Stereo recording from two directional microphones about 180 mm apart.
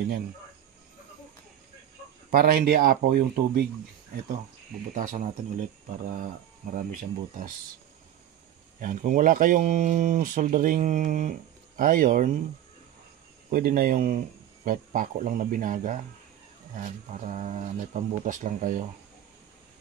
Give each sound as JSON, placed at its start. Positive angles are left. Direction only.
{"t": 2.3, "sound": "speech", "side_deg": -55}
{"t": 4.9, "sound": "speech", "side_deg": -45}
{"t": 6.7, "sound": "speech", "side_deg": -45}
{"t": 8.7, "sound": "speech", "side_deg": -50}
{"t": 13.5, "sound": "speech", "side_deg": -50}